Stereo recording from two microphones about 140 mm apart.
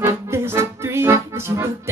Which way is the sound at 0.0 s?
20° right (ahead or behind).